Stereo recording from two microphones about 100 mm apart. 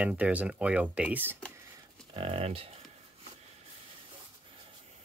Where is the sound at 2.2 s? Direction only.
70° right (ahead or behind).